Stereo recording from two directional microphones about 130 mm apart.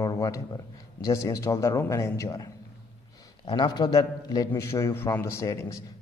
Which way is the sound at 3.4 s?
35° left (ahead or behind).